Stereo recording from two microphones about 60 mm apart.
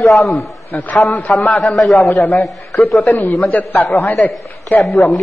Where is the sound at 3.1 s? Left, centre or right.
Left.